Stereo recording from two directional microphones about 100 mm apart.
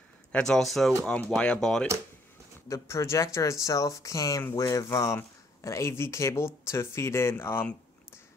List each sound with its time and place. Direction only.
0.3 s speech: 5° left (ahead or behind)
2.7 s speech: 30° left (ahead or behind)